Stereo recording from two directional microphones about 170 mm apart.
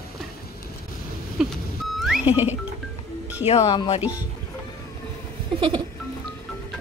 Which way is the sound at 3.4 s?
40° left (ahead or behind).